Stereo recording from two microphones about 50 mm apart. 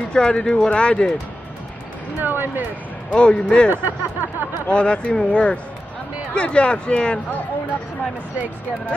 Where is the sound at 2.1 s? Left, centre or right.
Right.